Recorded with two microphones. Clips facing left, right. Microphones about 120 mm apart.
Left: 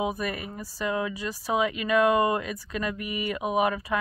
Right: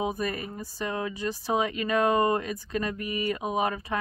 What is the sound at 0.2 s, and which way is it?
Speech, 35° right (ahead or behind).